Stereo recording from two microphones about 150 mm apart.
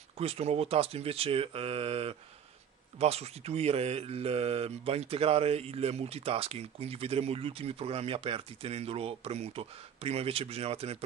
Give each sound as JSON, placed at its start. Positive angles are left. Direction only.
{"t": 0.2, "sound": "speech", "side_deg": -45}